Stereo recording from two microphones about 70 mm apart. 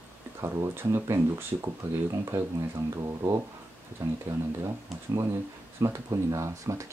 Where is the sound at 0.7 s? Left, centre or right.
Right.